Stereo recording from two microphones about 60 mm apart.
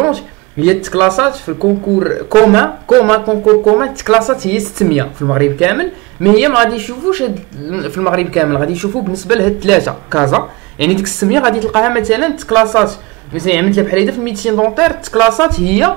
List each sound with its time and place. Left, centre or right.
0.0 s speech: centre